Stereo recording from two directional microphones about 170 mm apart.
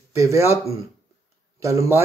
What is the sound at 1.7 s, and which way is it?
Speech, 15° right (ahead or behind).